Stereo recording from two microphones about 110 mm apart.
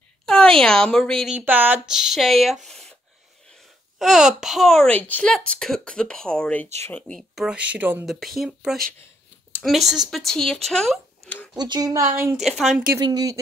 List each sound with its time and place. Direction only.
0.2 s speech: 5° left (ahead or behind)
1.3 s speech: 15° right (ahead or behind)
1.9 s speech: 5° right (ahead or behind)
4.0 s speech: centre (ahead or behind)
4.9 s speech: 15° left (ahead or behind)
7.3 s speech: 10° right (ahead or behind)
8.0 s speech: centre (ahead or behind)
11.5 s speech: 40° right (ahead or behind)
11.9 s speech: 25° right (ahead or behind)
12.4 s speech: centre (ahead or behind)
13.0 s speech: 35° right (ahead or behind)